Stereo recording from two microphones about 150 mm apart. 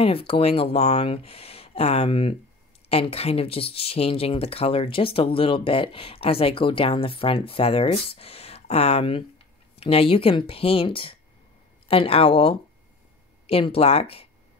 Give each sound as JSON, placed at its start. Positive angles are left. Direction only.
{"t": 0.0, "sound": "speech", "side_deg": 40}